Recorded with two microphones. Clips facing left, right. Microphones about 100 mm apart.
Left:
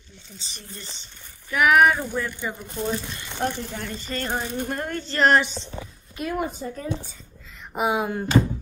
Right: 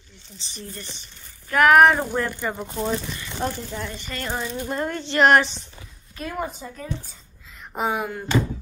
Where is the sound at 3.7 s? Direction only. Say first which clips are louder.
Right 1 dB; 50° left (ahead or behind).